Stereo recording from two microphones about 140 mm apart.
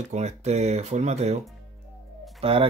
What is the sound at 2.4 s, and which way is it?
Speech, 40° right (ahead or behind).